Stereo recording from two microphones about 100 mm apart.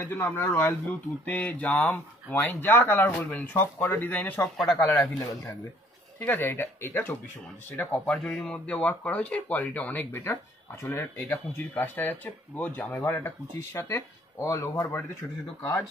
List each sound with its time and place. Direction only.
0.0 s speech: 25° left (ahead or behind)
6.1 s speech: 20° left (ahead or behind)